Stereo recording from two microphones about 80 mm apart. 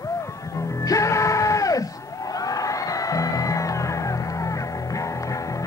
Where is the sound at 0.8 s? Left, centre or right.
Left.